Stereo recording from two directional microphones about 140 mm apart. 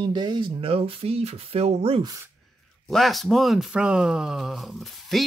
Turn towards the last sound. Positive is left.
turn(degrees=0)  # may be behind; listen again after turning